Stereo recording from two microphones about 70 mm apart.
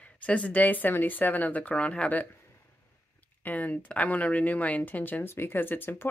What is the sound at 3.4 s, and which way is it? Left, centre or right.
Speech, left.